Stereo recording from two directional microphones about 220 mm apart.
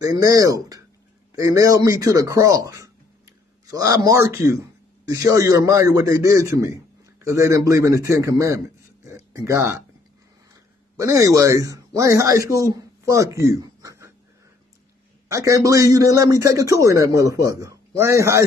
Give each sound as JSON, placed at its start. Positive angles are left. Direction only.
{"t": 0.0, "sound": "a man's voice", "side_deg": -15}
{"t": 9.0, "sound": "a sound", "side_deg": -15}
{"t": 11.0, "sound": "speech", "side_deg": -15}
{"t": 15.2, "sound": "a man's voice", "side_deg": -15}